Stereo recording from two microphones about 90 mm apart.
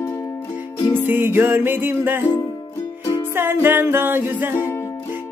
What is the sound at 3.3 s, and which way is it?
Music, 25° right (ahead or behind).